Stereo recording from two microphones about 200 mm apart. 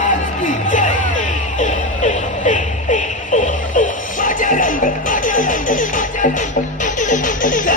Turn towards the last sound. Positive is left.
turn(degrees=40)  # may be behind; listen again after turning